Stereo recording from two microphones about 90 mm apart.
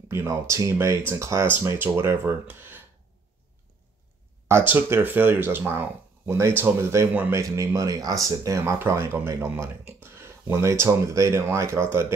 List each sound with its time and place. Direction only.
0.1 s speech: 35° right (ahead or behind)
4.5 s speech: 25° right (ahead or behind)